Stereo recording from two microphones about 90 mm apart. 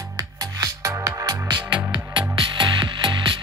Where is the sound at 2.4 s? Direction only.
65° right (ahead or behind).